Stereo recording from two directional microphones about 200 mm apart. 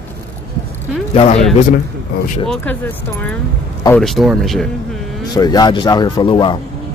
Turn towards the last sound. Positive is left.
turn(degrees=25)  # may be behind; listen again after turning